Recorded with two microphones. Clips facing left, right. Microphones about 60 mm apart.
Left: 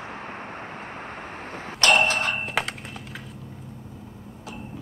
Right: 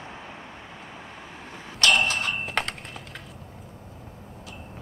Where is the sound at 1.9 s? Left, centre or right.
Left.